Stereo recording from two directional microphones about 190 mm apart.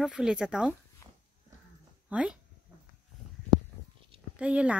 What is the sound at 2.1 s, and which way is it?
Speech, 5° right (ahead or behind).